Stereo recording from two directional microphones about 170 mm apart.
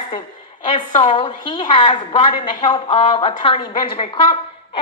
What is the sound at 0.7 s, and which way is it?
A woman's voice, 30° left (ahead or behind).